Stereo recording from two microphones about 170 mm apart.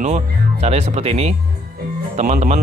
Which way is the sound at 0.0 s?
40° right (ahead or behind).